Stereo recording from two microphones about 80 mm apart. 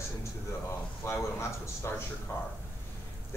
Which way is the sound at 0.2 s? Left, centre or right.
Left.